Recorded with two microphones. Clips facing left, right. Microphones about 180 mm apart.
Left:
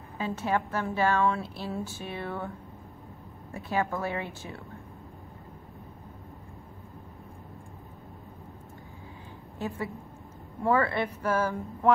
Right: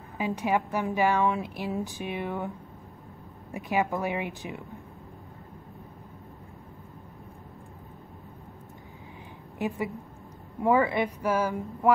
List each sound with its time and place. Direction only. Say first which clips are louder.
0.2 s a woman's voice: right 2 dB; 15° right (ahead or behind)
3.5 s a woman's voice: right 2 dB; 15° right (ahead or behind)
9.6 s a woman's voice: right 3 dB; 15° right (ahead or behind)